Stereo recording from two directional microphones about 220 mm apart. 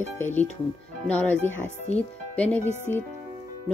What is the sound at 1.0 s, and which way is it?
Speech, 5° left (ahead or behind).